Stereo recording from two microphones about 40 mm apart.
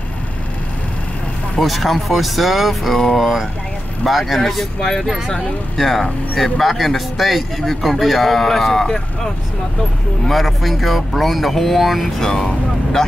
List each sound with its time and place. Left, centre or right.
1.6 s speech: centre
4.7 s speech: centre
5.8 s speech: centre
10.3 s speech: centre
12.2 s speech: centre